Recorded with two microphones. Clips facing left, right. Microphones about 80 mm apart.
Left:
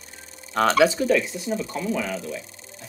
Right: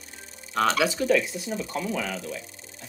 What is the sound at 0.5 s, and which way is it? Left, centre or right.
Speech, left.